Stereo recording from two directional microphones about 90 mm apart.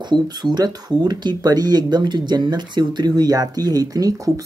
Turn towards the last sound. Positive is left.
turn(degrees=-45)  # may be behind; listen again after turning